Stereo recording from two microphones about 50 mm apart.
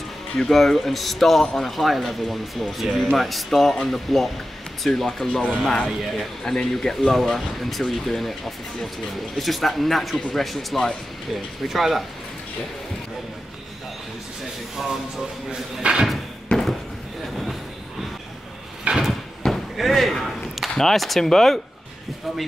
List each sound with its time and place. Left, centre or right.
0.4 s a man's voice: centre
6.4 s a man's voice: centre
14.8 s a man's voice: centre
15.8 s slam: centre
16.5 s a sound: left
19.0 s a sound: centre
19.8 s a man's voice: centre